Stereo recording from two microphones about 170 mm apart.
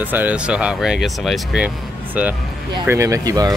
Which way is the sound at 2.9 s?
20° right (ahead or behind).